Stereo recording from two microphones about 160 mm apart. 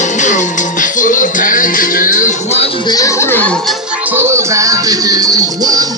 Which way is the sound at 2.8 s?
20° left (ahead or behind).